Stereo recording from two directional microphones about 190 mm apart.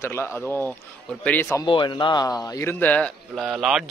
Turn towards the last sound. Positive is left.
turn(degrees=0)  # may be behind; listen again after turning